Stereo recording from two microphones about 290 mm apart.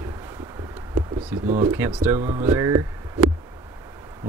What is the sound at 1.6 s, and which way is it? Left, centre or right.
Speech, centre.